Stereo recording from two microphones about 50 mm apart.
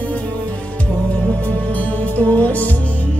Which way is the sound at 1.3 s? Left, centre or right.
Left.